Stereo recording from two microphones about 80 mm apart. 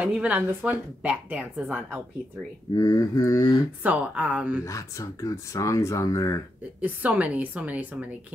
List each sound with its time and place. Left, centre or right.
0.0 s speech: right
2.7 s speech: left
3.8 s speech: centre
4.6 s speech: left
6.8 s speech: centre